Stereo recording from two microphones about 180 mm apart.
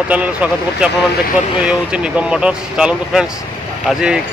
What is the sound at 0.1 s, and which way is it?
Speech, 10° right (ahead or behind).